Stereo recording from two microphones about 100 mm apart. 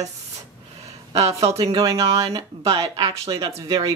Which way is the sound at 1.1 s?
90° right.